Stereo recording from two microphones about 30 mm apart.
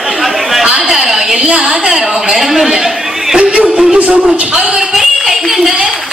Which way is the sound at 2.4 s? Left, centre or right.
Centre.